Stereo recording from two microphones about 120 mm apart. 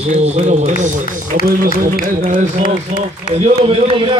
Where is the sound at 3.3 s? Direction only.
60° right (ahead or behind).